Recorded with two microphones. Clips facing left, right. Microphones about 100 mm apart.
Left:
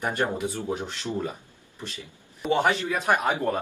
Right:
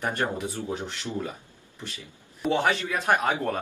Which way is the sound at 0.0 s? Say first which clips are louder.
Left 2 dB; 20° left (ahead or behind).